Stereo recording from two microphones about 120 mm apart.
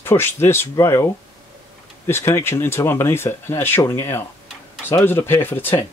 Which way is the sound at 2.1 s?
20° left (ahead or behind).